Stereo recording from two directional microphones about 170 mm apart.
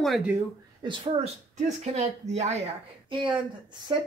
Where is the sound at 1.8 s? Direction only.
40° right (ahead or behind).